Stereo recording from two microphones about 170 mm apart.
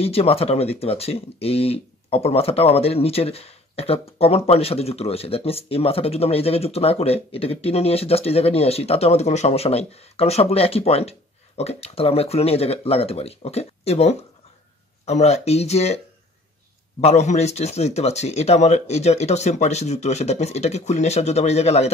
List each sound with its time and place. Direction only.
0.0 s speech: 35° left (ahead or behind)
17.0 s speech: 40° left (ahead or behind)